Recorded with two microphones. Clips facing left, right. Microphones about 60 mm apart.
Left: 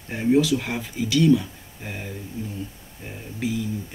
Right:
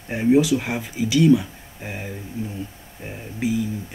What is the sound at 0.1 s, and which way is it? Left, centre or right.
Speech, centre.